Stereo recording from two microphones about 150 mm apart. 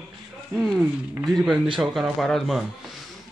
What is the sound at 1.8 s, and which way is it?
Speech, centre (ahead or behind).